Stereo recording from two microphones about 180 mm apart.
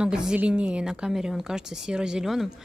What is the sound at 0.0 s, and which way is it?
A woman's voice, 5° right (ahead or behind).